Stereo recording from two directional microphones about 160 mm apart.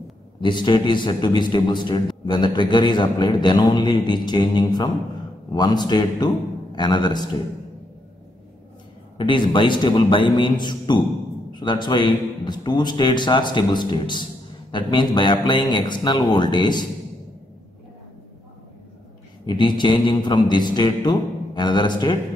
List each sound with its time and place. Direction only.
0.4 s a man's voice: 30° left (ahead or behind)
9.2 s a man's voice: 30° left (ahead or behind)
19.4 s a man's voice: 30° left (ahead or behind)